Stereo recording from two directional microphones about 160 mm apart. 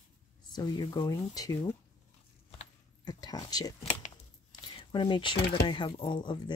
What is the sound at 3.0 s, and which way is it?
Speech, 25° left (ahead or behind).